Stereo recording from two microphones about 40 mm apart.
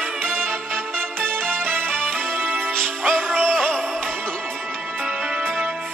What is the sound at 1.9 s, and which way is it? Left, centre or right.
Music, centre.